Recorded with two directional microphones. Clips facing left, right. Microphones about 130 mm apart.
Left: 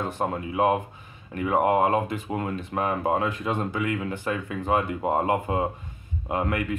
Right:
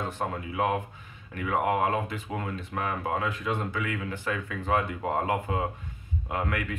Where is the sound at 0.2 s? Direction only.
25° left (ahead or behind).